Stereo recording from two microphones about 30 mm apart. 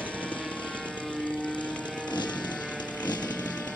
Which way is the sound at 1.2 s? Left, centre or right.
Left.